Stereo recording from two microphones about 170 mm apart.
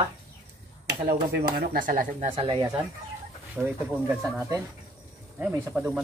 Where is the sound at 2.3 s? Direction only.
30° right (ahead or behind).